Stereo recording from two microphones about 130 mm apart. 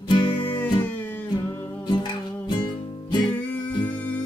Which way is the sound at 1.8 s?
35° left (ahead or behind).